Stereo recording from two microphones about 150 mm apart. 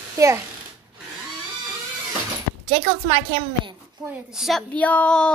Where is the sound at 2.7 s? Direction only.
35° right (ahead or behind).